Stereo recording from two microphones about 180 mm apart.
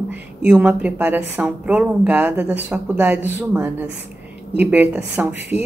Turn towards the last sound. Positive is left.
turn(degrees=-5)  # may be behind; listen again after turning